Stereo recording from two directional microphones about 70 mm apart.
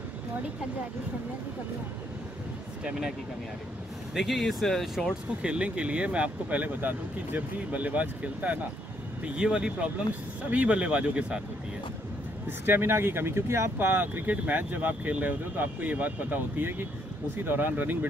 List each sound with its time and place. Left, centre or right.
2.8 s speech: centre
5.4 s speech: centre
12.4 s speech: right